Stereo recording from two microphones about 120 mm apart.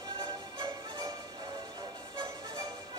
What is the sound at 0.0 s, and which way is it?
Music, 30° right (ahead or behind).